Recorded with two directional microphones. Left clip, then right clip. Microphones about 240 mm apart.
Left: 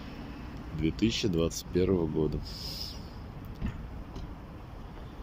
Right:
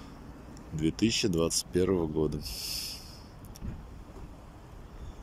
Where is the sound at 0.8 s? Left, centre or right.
Centre.